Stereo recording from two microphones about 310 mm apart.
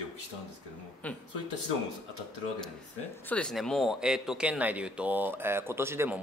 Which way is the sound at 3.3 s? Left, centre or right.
Centre.